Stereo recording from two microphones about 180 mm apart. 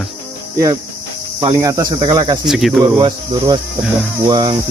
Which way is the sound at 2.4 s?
Centre (ahead or behind).